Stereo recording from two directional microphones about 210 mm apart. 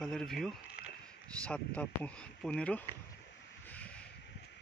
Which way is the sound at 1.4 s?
5° left (ahead or behind).